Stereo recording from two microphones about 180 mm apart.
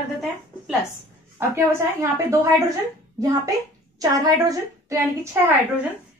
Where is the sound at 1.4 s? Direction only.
15° right (ahead or behind).